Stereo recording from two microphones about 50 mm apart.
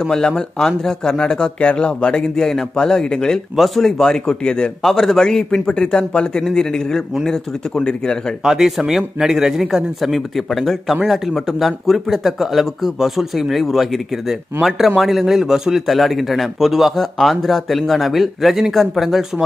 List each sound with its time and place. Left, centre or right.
0.0 s a man's voice: centre
3.5 s a man's voice: centre
8.5 s a man's voice: centre
15.0 s a man's voice: centre